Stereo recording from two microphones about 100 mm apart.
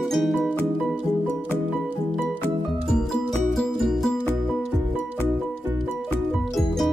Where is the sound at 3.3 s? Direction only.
5° left (ahead or behind).